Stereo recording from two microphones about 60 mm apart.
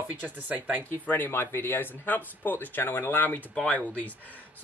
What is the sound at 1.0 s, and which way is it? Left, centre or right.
Speech, left.